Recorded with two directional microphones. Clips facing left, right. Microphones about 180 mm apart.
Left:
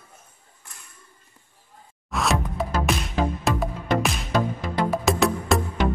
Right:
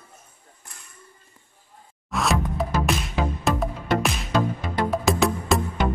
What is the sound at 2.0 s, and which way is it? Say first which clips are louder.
Music: right 1 dB; centre (ahead or behind).